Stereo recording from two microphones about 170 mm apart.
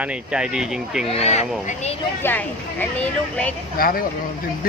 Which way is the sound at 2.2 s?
10° left (ahead or behind).